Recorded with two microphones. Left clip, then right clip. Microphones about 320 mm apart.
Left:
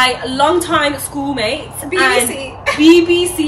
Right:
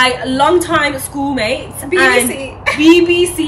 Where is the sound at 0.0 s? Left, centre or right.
Centre.